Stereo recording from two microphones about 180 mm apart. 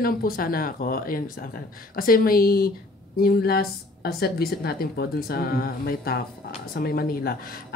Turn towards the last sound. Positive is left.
turn(degrees=55)  # may be behind; listen again after turning